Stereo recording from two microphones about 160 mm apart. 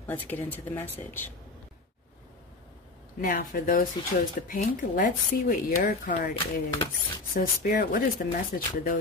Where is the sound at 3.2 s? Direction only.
65° left (ahead or behind).